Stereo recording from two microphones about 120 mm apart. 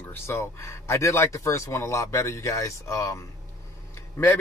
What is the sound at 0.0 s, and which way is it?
A man's voice, 20° left (ahead or behind).